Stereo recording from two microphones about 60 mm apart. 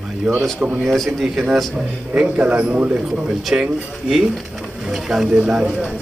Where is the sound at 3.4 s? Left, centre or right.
Centre.